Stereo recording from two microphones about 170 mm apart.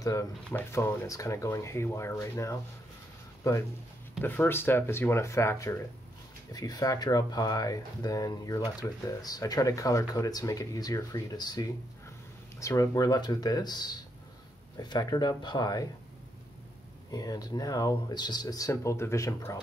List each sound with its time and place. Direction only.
0.0 s speech: 20° left (ahead or behind)
4.2 s speech: 10° left (ahead or behind)
17.1 s speech: 20° left (ahead or behind)